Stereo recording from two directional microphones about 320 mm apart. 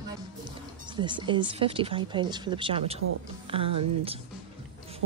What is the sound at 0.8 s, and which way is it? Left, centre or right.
Speech, centre.